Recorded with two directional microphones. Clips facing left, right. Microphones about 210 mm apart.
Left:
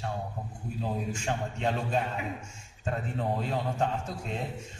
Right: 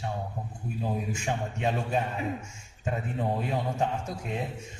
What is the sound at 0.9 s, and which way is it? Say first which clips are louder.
A man's voice: even; 10° right (ahead or behind).